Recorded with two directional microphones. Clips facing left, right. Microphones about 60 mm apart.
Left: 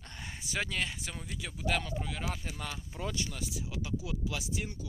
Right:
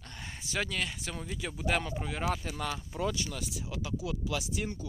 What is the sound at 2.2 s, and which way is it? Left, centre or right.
Speech, right.